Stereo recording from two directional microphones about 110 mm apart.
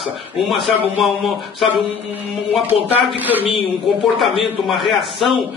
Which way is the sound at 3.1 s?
15° right (ahead or behind).